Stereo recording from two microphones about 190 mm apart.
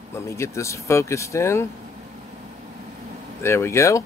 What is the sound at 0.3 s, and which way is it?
Speech, 15° left (ahead or behind).